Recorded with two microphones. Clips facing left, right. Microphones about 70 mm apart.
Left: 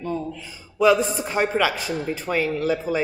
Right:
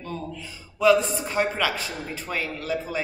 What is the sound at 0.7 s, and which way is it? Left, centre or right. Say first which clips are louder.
Speech: left 1 dB; centre.